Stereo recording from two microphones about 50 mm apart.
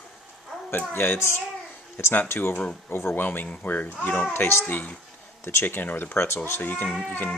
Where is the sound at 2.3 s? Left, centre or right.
Left.